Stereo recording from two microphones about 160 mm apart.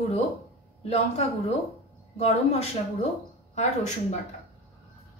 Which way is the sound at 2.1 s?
40° left (ahead or behind).